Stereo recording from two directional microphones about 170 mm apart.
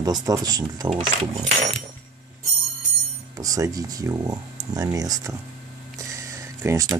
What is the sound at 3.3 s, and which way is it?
Speech, 20° right (ahead or behind).